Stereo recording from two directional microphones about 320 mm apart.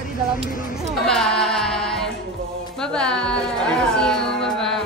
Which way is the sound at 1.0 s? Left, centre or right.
Centre.